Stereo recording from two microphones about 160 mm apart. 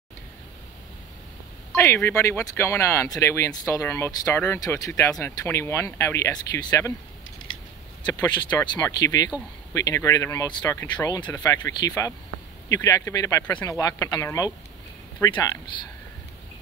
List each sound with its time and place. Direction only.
1.8 s speech: 15° left (ahead or behind)
8.0 s speech: 25° left (ahead or behind)
13.5 s speech: 10° left (ahead or behind)
13.7 s speech: 20° left (ahead or behind)